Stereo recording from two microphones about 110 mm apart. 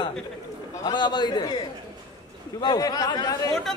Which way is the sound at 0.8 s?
40° left (ahead or behind).